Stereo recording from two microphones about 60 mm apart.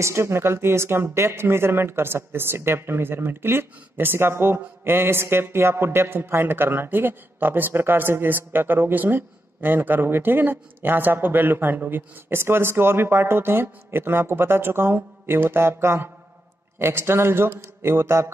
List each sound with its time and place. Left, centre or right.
0.0 s a man's voice: right